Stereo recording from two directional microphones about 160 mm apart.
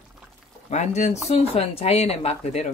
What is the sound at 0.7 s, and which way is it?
Speech, 45° left (ahead or behind).